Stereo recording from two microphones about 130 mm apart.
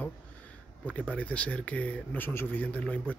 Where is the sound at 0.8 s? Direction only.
10° left (ahead or behind).